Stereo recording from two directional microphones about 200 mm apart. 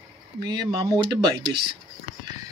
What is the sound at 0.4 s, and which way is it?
Speech, 20° right (ahead or behind).